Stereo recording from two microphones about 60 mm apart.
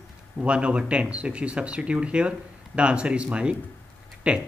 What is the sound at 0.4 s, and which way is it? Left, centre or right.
Speech, centre.